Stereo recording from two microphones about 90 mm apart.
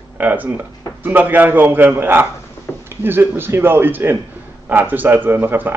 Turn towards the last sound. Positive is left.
turn(degrees=-20)  # may be behind; listen again after turning